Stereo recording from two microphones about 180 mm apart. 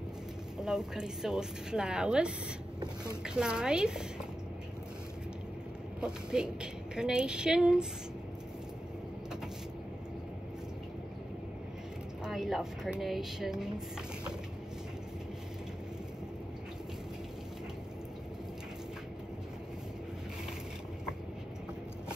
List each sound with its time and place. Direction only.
0.6 s a woman's voice: 5° right (ahead or behind)
3.3 s a woman's voice: 5° right (ahead or behind)
5.9 s a woman's voice: 5° right (ahead or behind)
12.3 s a woman's voice: centre (ahead or behind)